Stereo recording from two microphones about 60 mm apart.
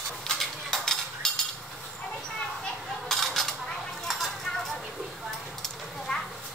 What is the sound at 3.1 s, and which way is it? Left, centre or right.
Dishes, centre.